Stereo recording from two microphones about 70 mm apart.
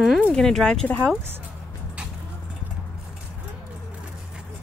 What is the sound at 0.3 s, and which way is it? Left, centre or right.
Speech, centre.